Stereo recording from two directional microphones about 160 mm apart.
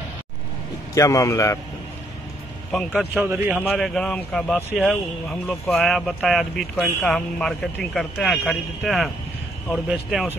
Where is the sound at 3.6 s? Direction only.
Centre (ahead or behind).